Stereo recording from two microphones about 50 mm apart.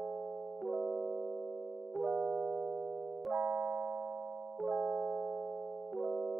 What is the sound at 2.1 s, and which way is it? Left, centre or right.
Music, centre.